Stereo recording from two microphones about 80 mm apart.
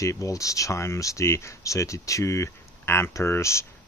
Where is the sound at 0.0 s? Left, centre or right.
Left.